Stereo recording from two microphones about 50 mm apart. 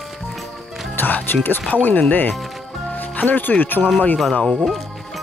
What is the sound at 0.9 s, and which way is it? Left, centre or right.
Speech, left.